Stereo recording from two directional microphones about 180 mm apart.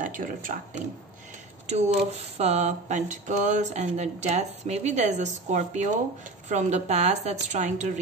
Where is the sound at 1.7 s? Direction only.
35° right (ahead or behind).